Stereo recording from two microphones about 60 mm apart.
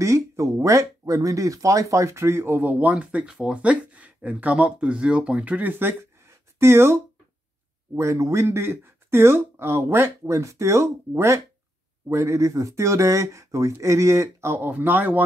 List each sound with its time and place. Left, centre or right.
0.0 s speech: right
6.2 s a sound: right
7.9 s speech: right
14.5 s speech: right